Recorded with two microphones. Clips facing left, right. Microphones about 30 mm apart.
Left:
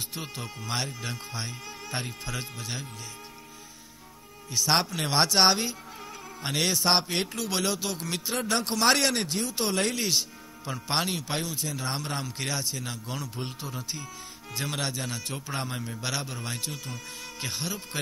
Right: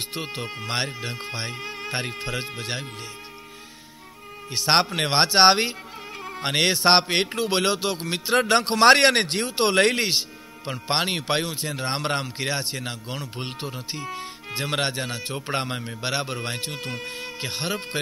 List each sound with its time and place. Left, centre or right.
0.1 s speech: right
4.5 s a man's voice: right
6.2 s music: right
7.3 s speech: right
8.4 s a man's voice: right
10.0 s a man's voice: right
11.1 s a man's voice: right
12.4 s speech: right
13.4 s a man's voice: right
15.5 s speech: right
16.3 s a man's voice: right
17.2 s speech: right
17.6 s a man's voice: right